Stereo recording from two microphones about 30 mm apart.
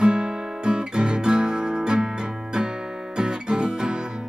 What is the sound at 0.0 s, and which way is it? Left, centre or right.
Guitar, right.